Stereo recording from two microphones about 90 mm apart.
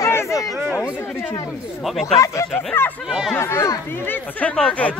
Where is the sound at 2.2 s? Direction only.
30° left (ahead or behind).